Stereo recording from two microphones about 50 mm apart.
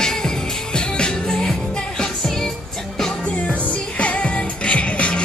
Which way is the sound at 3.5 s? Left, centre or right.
Left.